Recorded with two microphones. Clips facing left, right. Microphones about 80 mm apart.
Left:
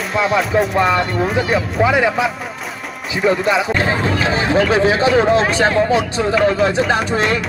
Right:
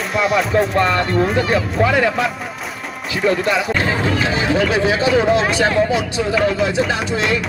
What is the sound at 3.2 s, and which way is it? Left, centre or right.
Speech, centre.